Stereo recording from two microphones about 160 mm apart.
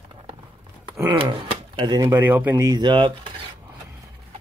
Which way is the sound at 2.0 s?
15° right (ahead or behind).